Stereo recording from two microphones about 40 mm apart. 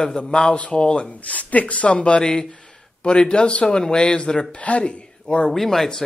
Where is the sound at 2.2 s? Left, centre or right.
Centre.